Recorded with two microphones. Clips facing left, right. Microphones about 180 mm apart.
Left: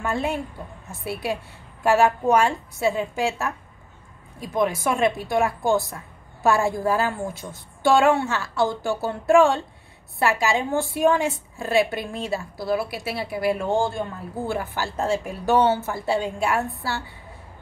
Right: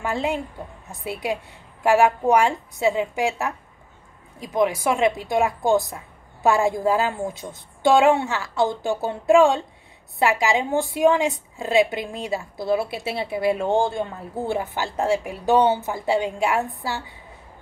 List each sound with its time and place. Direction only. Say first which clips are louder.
0.0 s a woman's voice: right 1 dB; 15° right (ahead or behind)